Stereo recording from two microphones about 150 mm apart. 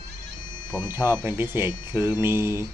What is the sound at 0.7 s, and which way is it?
Speech, 20° right (ahead or behind).